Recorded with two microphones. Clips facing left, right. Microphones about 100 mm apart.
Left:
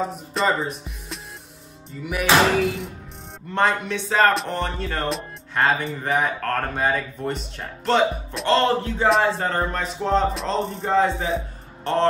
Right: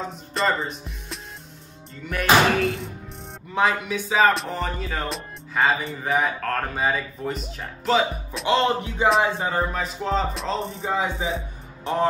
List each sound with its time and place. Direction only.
0.0 s speech: centre (ahead or behind)
8.5 s speech: 20° right (ahead or behind)
9.4 s a man's voice: 5° right (ahead or behind)